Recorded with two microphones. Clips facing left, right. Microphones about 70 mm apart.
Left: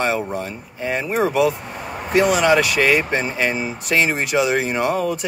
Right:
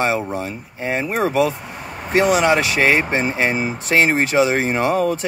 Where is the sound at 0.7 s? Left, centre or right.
Right.